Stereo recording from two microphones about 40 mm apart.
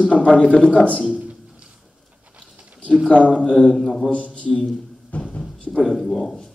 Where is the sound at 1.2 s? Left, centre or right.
Right.